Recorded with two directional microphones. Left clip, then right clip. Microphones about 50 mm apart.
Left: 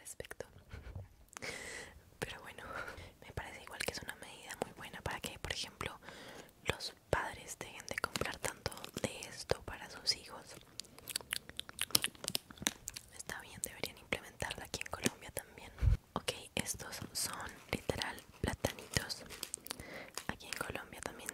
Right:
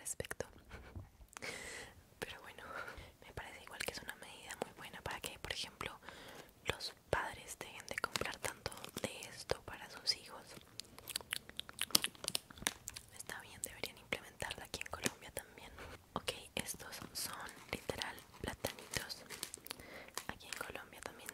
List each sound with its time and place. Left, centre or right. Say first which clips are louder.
0.2 s whispering: right 2 dB; right
1.3 s whispering: left 2 dB; left
3.4 s whispering: left 3 dB; left
12.0 s a sound: left 2 dB; left
12.6 s whispering: left 2 dB; left
18.9 s a sound: left 4 dB; left
20.2 s whispering: left 6 dB; left